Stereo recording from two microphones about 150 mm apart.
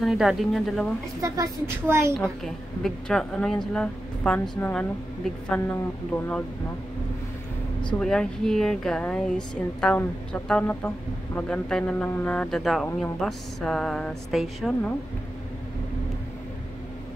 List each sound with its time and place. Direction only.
0.0 s a woman's voice: 5° right (ahead or behind)
1.2 s a woman's voice: 20° right (ahead or behind)
2.1 s a woman's voice: centre (ahead or behind)
8.0 s a woman's voice: 5° left (ahead or behind)